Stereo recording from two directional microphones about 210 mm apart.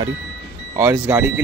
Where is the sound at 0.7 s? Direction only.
10° right (ahead or behind).